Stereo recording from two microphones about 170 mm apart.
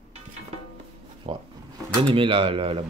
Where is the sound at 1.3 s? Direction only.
35° right (ahead or behind).